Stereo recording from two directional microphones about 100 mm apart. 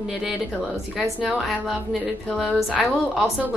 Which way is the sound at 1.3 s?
Centre (ahead or behind).